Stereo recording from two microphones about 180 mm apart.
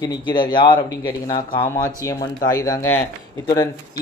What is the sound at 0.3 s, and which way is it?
Speech, 25° left (ahead or behind).